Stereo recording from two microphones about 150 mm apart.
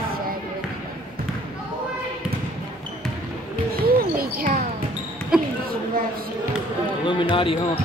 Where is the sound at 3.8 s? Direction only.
85° right.